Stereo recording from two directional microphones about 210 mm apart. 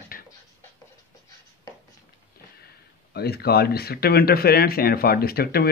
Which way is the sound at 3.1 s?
50° left (ahead or behind).